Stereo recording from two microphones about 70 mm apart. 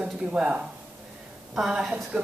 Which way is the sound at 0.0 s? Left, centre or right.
Centre.